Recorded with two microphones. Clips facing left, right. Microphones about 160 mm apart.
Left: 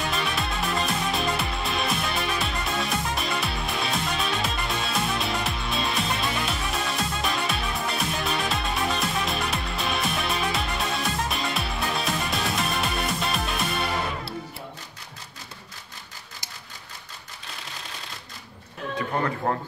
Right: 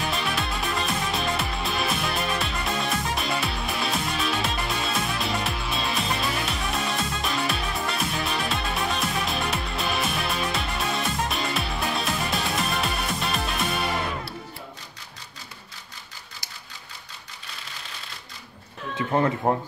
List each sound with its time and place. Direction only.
0.1 s music: centre (ahead or behind)
19.4 s speech: 20° right (ahead or behind)